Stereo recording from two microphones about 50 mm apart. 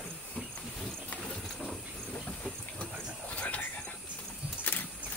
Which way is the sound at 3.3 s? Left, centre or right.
Left.